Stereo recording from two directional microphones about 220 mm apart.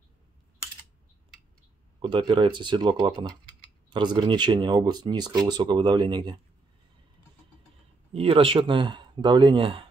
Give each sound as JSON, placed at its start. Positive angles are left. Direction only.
{"t": 2.0, "sound": "speech", "side_deg": -20}
{"t": 8.1, "sound": "speech", "side_deg": -25}